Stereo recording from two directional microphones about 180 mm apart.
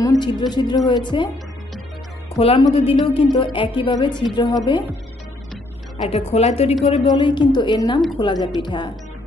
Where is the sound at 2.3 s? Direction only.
30° left (ahead or behind).